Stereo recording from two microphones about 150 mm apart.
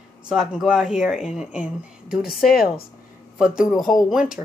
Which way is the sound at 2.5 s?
80° left.